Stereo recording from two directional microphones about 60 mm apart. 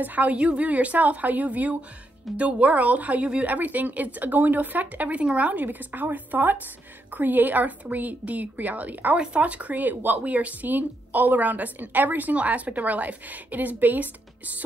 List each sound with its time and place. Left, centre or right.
0.0 s speech: right